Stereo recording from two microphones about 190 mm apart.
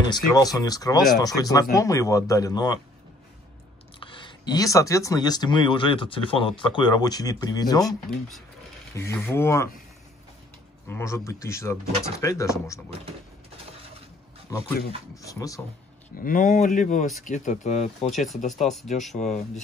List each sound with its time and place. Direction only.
0.0 s speech: 20° left (ahead or behind)
4.0 s speech: 25° left (ahead or behind)
7.8 s speech: centre (ahead or behind)
8.9 s speech: 15° left (ahead or behind)
10.9 s speech: 15° left (ahead or behind)
15.2 s speech: 15° left (ahead or behind)
16.2 s speech: 45° left (ahead or behind)
18.5 s speech: centre (ahead or behind)
19.1 s speech: 40° left (ahead or behind)